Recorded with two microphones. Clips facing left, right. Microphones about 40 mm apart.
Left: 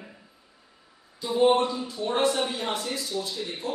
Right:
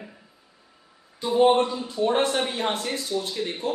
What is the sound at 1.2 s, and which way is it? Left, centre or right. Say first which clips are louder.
Speech: right 2 dB; right.